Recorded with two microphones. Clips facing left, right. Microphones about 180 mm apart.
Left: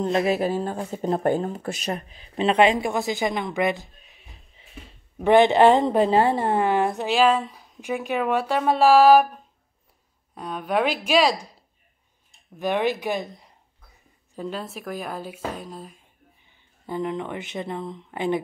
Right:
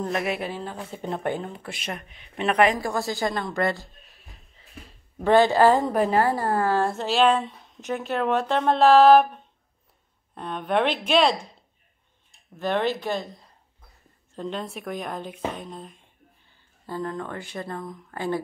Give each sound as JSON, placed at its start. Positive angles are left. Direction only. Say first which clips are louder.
{"t": 0.0, "sound": "speech", "louder": "left 5 dB", "side_deg": 30}
{"t": 3.9, "sound": "a sound", "louder": "even", "side_deg": 0}
{"t": 5.2, "sound": "a woman's voice", "louder": "left 2 dB", "side_deg": 20}
{"t": 7.1, "sound": "speech", "louder": "even", "side_deg": 0}
{"t": 12.5, "sound": "speech", "louder": "left 1 dB", "side_deg": 15}
{"t": 14.3, "sound": "speech", "louder": "even", "side_deg": 5}
{"t": 16.8, "sound": "a woman's voice", "louder": "left 3 dB", "side_deg": 20}